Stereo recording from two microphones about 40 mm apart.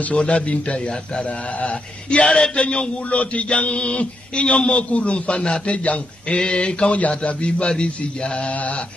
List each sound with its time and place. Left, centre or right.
0.0 s a man's voice: left